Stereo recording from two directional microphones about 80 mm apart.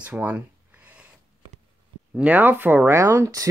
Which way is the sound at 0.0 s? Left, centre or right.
Centre.